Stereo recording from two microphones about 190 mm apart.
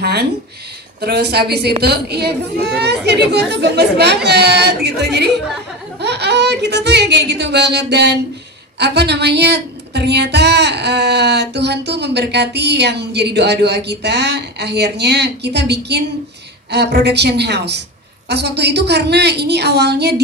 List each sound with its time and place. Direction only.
0.0 s speech: 60° right (ahead or behind)